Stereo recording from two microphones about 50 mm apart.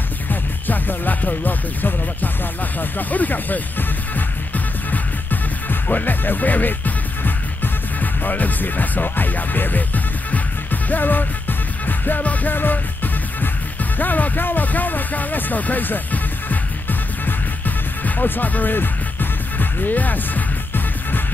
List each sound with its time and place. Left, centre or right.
0.3 s music: left
2.8 s speech: left
4.9 s music: left
13.9 s speech: left
17.2 s music: left